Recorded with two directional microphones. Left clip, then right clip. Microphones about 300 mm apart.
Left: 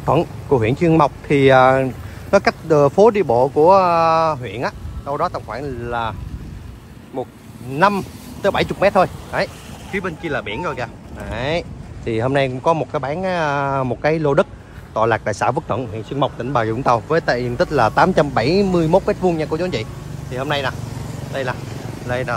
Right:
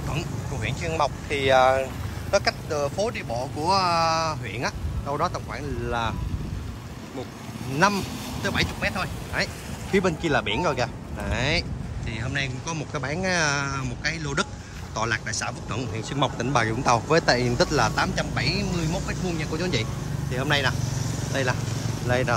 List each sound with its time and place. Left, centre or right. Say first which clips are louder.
0.1 s speech: left 19 dB; centre
7.8 s speech: left 6 dB; centre
9.9 s speech: even; centre